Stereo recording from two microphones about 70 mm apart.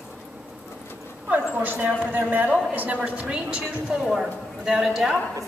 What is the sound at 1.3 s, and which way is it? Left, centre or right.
A woman's voice, right.